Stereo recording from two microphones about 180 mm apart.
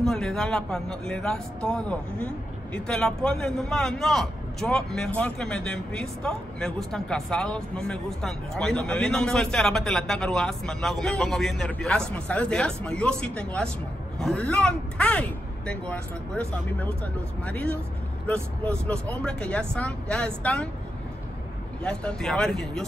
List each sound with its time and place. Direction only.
0.0 s a man's voice: 5° left (ahead or behind)
21.8 s a man's voice: 5° left (ahead or behind)